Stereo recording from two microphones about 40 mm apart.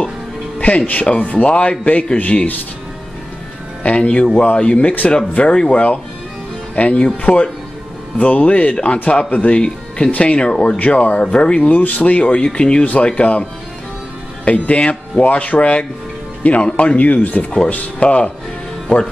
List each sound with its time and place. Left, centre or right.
0.6 s speech: left
3.8 s speech: left
9.3 s speech: left
9.6 s speech: left
11.7 s speech: left